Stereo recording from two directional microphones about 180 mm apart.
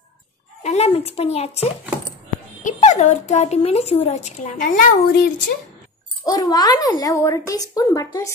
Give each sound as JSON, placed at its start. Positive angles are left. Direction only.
{"t": 0.7, "sound": "speech", "side_deg": 35}
{"t": 6.2, "sound": "speech", "side_deg": 20}